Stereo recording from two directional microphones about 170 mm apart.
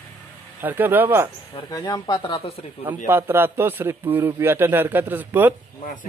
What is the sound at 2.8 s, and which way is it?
A man's voice, 15° right (ahead or behind).